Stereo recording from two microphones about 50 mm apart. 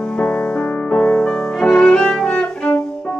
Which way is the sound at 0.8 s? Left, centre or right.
Left.